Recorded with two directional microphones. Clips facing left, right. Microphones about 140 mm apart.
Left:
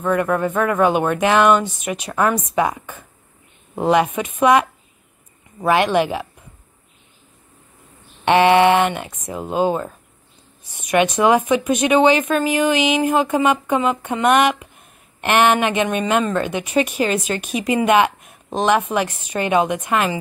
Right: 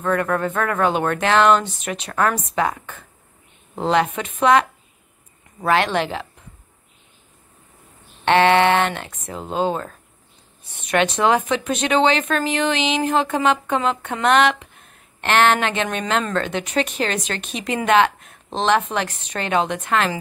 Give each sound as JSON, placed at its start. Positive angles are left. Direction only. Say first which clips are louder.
{"t": 0.0, "sound": "speech", "louder": "left 2 dB", "side_deg": 10}
{"t": 8.3, "sound": "speech", "louder": "left 2 dB", "side_deg": 15}